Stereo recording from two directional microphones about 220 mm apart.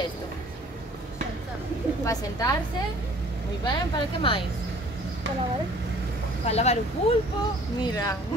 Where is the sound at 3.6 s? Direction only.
20° left (ahead or behind).